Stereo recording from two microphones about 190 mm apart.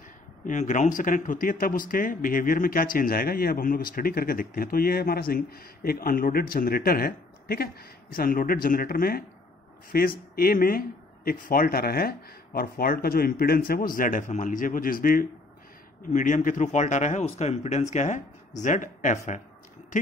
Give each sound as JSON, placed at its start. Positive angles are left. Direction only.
{"t": 0.5, "sound": "speech", "side_deg": 40}